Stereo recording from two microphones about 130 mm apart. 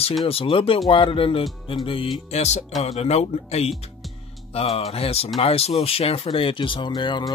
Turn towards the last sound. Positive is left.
turn(degrees=35)  # may be behind; listen again after turning